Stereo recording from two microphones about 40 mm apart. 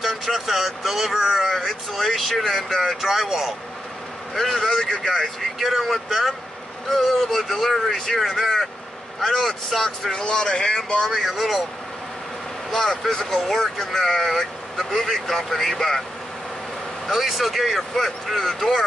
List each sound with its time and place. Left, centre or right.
0.0 s speech: centre
4.4 s speech: centre
5.6 s speech: centre
6.9 s speech: centre
10.1 s speech: centre
12.7 s speech: centre
17.1 s speech: centre